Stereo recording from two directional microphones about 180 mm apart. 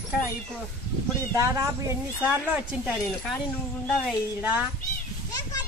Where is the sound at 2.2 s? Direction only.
5° right (ahead or behind).